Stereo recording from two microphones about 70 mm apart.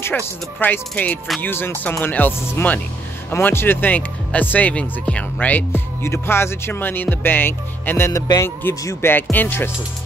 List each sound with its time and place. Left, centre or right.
0.6 s speech: left
5.7 s music: left
9.0 s speech: left